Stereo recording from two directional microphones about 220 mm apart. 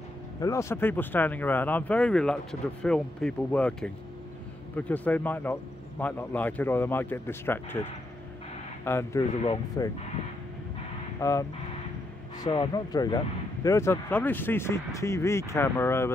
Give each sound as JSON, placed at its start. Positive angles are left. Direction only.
{"t": 0.4, "sound": "speech", "side_deg": 15}
{"t": 8.8, "sound": "speech", "side_deg": 10}
{"t": 9.3, "sound": "speech", "side_deg": 25}
{"t": 11.1, "sound": "speech", "side_deg": 15}